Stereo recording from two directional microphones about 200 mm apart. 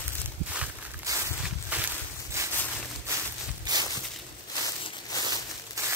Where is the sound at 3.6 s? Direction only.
20° right (ahead or behind).